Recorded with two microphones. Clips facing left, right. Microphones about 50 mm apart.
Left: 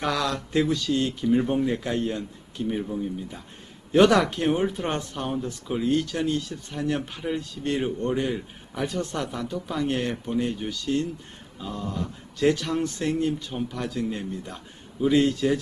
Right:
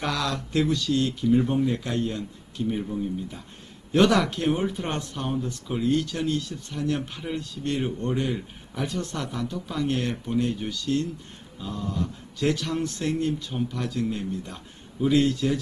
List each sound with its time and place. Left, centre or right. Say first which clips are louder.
0.0 s speech: left 2 dB; centre
3.9 s speech: left 2 dB; centre